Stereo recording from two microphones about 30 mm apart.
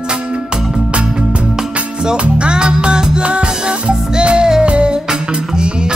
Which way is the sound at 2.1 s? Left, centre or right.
Right.